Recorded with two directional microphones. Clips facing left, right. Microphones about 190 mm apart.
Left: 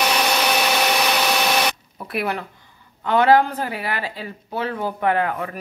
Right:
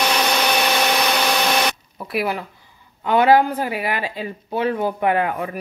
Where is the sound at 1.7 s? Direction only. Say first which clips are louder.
Right 2 dB; centre (ahead or behind).